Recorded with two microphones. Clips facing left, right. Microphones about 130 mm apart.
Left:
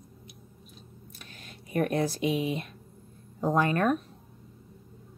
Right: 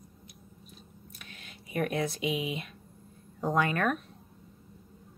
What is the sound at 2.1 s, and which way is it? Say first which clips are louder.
Speech: left 4 dB; centre (ahead or behind).